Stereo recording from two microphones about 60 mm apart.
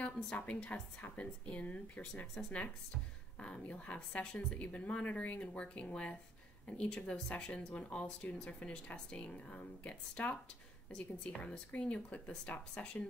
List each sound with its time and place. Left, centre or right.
0.0 s speech: centre